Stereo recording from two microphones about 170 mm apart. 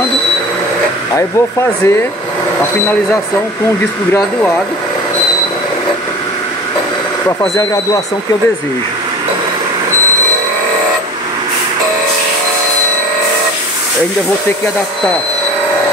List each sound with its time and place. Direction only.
1.1 s speech: 15° left (ahead or behind)
7.2 s speech: 20° left (ahead or behind)